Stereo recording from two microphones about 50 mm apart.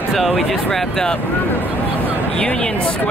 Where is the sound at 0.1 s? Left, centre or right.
Centre.